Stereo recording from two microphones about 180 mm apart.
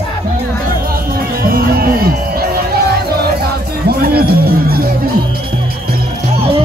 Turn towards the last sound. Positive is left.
turn(degrees=-55)  # may be behind; listen again after turning